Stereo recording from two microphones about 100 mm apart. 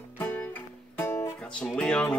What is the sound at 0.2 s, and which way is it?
Music, 15° left (ahead or behind).